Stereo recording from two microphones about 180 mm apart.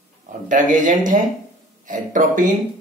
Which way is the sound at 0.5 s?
45° right (ahead or behind).